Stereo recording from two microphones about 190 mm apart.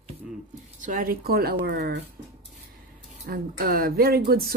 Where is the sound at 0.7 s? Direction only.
45° right (ahead or behind).